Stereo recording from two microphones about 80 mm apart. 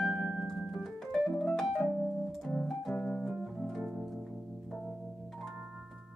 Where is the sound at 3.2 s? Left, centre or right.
Centre.